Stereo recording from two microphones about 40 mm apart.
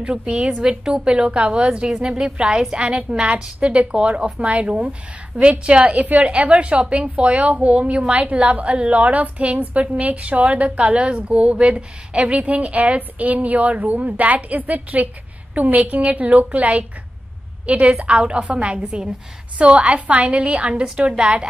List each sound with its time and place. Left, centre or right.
0.0 s a woman's voice: right